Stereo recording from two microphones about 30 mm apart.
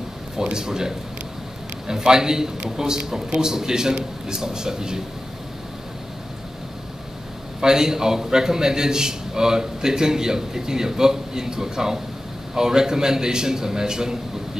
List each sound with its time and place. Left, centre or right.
0.4 s a man's voice: right
7.6 s a man's voice: centre